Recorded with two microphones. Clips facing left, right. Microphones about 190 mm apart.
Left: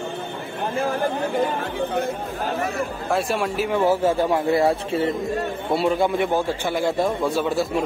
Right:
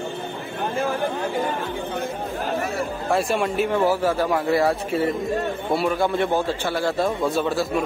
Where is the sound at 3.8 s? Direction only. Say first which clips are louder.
Left 1 dB; 25° left (ahead or behind).